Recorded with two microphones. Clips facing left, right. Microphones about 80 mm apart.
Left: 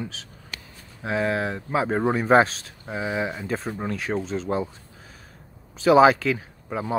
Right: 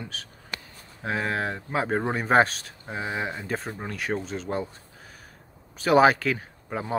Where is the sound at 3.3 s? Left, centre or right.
Centre.